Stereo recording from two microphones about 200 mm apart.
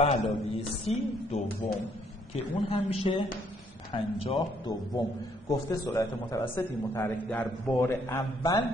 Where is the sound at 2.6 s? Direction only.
30° left (ahead or behind).